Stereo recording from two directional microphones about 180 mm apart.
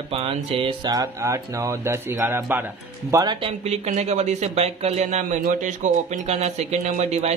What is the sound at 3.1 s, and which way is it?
Speech, 25° right (ahead or behind).